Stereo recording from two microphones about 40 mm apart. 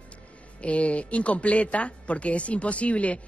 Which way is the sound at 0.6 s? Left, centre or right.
Left.